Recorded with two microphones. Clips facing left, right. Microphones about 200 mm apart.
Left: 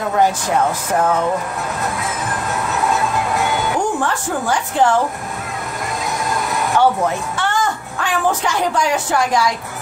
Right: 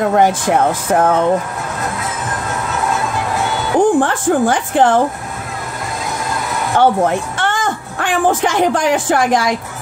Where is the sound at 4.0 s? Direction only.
55° right (ahead or behind).